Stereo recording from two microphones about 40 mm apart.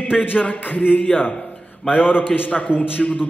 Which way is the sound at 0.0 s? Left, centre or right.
Left.